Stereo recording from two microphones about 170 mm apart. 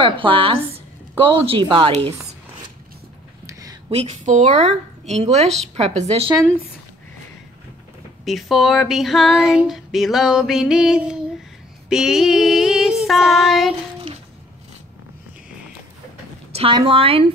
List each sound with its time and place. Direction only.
0.0 s speech: 30° right (ahead or behind)
3.4 s a sound: 20° right (ahead or behind)
3.9 s speech: 40° right (ahead or behind)
8.3 s speech: centre (ahead or behind)
16.7 s speech: 30° right (ahead or behind)